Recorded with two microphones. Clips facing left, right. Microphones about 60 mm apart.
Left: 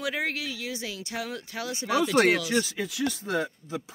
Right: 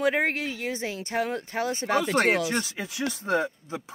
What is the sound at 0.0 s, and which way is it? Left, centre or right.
Speech, right.